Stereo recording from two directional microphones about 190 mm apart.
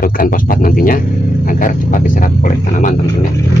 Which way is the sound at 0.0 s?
50° left (ahead or behind).